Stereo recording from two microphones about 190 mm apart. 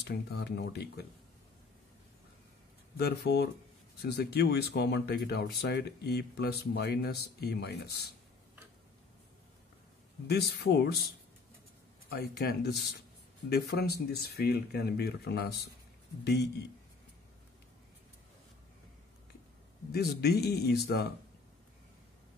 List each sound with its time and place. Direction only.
0.0 s speech: 60° left (ahead or behind)
3.0 s speech: 55° left (ahead or behind)
10.2 s speech: 60° left (ahead or behind)
12.1 s speech: 60° left (ahead or behind)
19.9 s speech: 55° left (ahead or behind)